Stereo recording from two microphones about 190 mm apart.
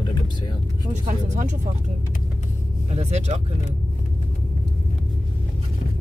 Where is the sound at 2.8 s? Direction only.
35° right (ahead or behind).